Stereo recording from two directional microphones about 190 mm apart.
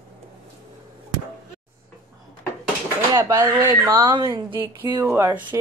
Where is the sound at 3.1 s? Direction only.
15° right (ahead or behind).